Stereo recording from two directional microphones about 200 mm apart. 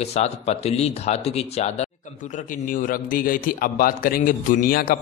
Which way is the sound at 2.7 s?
45° left (ahead or behind).